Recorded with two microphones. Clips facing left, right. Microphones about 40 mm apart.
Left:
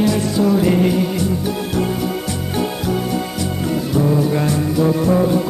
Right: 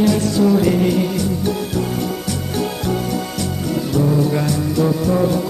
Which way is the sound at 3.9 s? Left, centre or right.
Centre.